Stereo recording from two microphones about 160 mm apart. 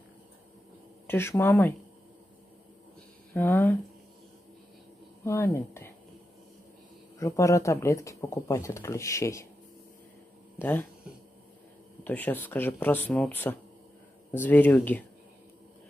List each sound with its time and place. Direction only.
1.0 s speech: 15° left (ahead or behind)
3.3 s speech: 10° left (ahead or behind)
5.2 s speech: 15° left (ahead or behind)
7.2 s speech: 20° left (ahead or behind)
10.6 s speech: 10° left (ahead or behind)
12.0 s speech: 10° left (ahead or behind)